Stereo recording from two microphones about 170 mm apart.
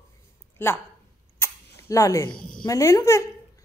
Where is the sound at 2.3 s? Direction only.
55° left (ahead or behind).